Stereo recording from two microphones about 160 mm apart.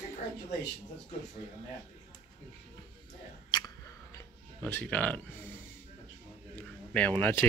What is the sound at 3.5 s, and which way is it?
Chewing, 25° left (ahead or behind).